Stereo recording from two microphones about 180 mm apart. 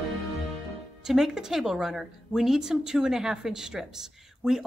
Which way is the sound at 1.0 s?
5° right (ahead or behind).